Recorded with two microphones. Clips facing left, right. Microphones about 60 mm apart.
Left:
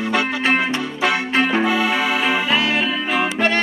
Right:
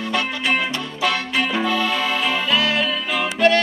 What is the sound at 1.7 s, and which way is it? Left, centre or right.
Music, centre.